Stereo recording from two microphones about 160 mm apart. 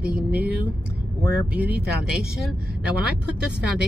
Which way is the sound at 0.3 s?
10° right (ahead or behind).